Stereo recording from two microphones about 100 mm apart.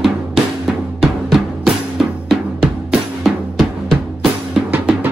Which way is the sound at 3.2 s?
Centre (ahead or behind).